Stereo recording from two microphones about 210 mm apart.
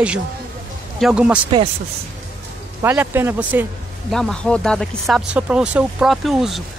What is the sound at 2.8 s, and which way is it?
Speech, 10° right (ahead or behind).